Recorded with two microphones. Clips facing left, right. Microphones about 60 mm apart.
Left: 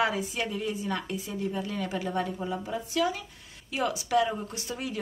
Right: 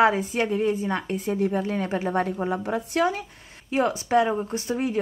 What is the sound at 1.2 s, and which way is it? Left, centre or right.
A woman's voice, right.